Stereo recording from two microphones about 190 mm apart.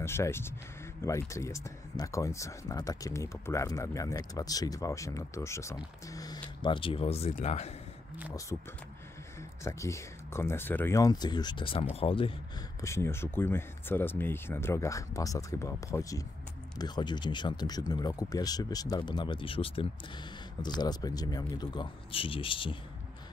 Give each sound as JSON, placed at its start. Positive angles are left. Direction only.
{"t": 0.0, "sound": "speech", "side_deg": 15}
{"t": 9.6, "sound": "speech", "side_deg": 15}
{"t": 12.8, "sound": "speech", "side_deg": 15}